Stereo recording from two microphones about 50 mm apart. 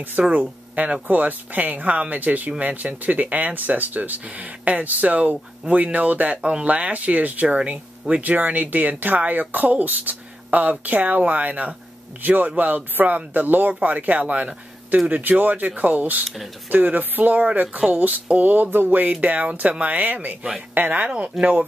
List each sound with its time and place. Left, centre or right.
0.3 s speech: right
21.1 s speech: right